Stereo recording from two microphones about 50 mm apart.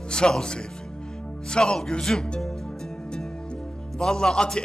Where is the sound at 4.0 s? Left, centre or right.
Centre.